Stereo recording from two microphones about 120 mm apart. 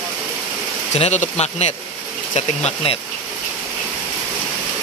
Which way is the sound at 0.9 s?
70° left (ahead or behind).